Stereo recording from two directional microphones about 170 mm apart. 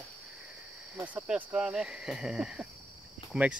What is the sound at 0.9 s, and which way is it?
Speech, 10° right (ahead or behind).